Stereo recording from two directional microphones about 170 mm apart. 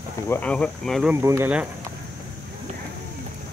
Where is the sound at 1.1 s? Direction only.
15° right (ahead or behind).